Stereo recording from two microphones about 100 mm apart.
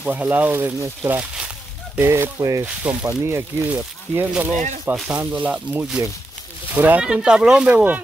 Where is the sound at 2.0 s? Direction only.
25° right (ahead or behind).